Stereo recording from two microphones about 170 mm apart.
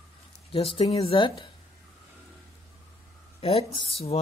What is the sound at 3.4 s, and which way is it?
Speech, 35° left (ahead or behind).